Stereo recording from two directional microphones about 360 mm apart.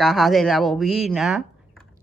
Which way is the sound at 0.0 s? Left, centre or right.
Centre.